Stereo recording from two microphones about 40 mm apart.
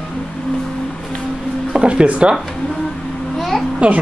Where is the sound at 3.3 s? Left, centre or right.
Centre.